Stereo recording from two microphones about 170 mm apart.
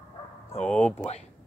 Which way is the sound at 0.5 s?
5° left (ahead or behind).